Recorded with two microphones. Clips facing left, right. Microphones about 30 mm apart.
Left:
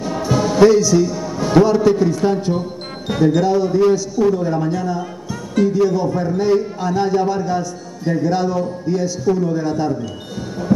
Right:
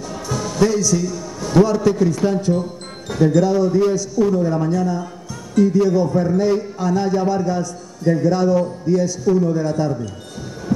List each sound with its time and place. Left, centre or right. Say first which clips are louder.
0.0 s music: left 7 dB; left
2.1 s speech: left 1 dB; centre